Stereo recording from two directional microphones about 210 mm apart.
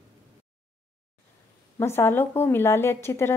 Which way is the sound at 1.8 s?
10° left (ahead or behind).